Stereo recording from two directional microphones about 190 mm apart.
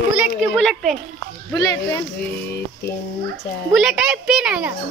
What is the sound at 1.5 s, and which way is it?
Speech, 20° left (ahead or behind).